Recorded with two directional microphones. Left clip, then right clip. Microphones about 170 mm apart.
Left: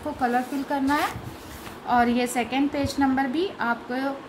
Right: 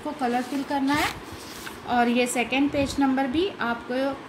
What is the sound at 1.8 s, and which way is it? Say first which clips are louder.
A woman's voice: left 1 dB; 10° right (ahead or behind).